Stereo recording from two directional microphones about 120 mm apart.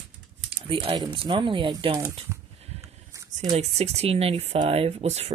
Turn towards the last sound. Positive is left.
turn(degrees=-60)  # may be behind; listen again after turning